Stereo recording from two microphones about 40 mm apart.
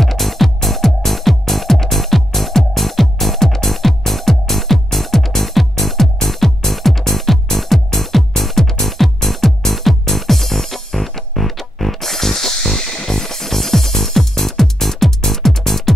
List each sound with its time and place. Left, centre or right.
0.0 s music: centre